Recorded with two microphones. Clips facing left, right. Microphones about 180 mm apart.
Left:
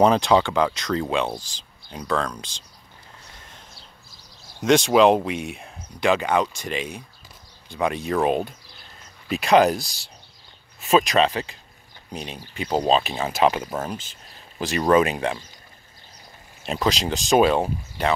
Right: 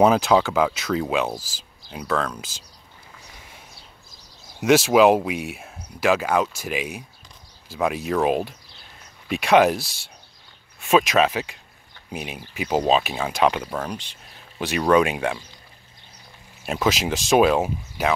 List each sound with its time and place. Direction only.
0.0 s speech: 5° right (ahead or behind)
3.3 s a sound: 10° right (ahead or behind)
4.6 s speech: 5° right (ahead or behind)
16.6 s speech: 5° right (ahead or behind)